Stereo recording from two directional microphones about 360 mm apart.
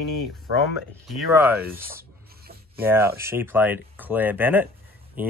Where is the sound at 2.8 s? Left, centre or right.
Centre.